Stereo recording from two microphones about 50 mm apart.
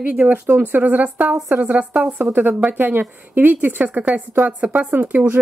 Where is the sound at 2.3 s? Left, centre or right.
Right.